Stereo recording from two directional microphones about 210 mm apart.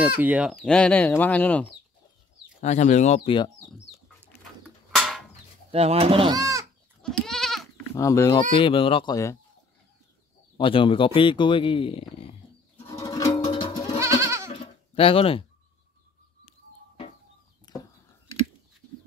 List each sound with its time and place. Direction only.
0.2 s speech: 5° right (ahead or behind)
2.6 s speech: 35° left (ahead or behind)
4.9 s a sound: centre (ahead or behind)
5.7 s speech: 30° right (ahead or behind)
7.0 s goat: 5° left (ahead or behind)
7.9 s speech: 15° left (ahead or behind)
10.6 s speech: 25° left (ahead or behind)
12.8 s music: 15° left (ahead or behind)
14.2 s goat: 15° right (ahead or behind)
14.5 s a sound: 25° left (ahead or behind)
17.7 s a sound: 20° left (ahead or behind)